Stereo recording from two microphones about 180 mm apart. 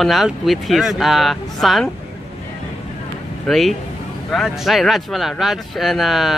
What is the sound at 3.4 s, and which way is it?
Speech, centre (ahead or behind).